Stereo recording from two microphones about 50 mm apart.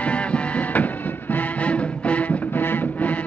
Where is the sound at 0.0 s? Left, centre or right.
Left.